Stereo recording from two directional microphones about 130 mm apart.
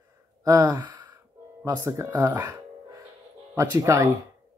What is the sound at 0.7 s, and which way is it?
Gasp, 35° right (ahead or behind).